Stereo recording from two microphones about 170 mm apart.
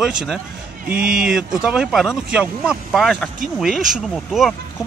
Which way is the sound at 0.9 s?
55° right (ahead or behind).